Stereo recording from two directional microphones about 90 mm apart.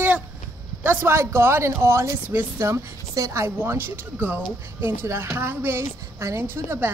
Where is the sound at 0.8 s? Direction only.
30° right (ahead or behind).